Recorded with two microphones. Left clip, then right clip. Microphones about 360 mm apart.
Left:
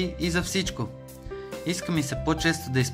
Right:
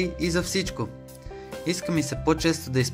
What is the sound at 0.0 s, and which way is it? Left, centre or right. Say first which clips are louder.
Speech: right 2 dB; centre.